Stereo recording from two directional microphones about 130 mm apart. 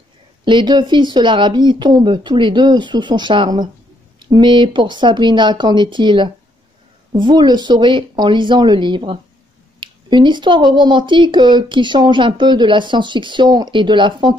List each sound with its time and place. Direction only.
0.5 s speech: 35° right (ahead or behind)